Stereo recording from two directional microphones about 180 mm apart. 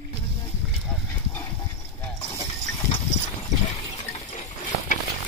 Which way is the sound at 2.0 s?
20° left (ahead or behind).